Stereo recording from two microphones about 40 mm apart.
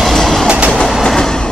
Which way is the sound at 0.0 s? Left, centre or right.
Centre.